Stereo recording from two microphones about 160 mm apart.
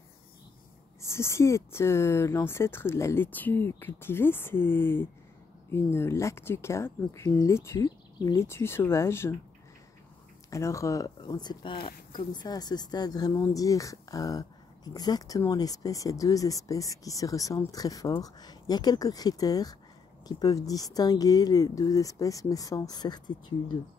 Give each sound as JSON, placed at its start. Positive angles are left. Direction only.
{"t": 1.0, "sound": "speech", "side_deg": 15}
{"t": 10.5, "sound": "speech", "side_deg": 20}